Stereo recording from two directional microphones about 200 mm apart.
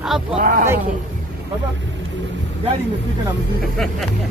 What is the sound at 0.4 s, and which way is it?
Speech, 45° right (ahead or behind).